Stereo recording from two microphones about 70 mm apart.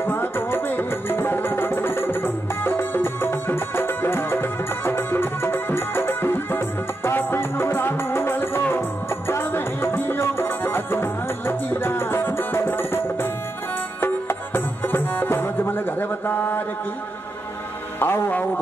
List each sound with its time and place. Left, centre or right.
0.0 s music: left
17.9 s music: left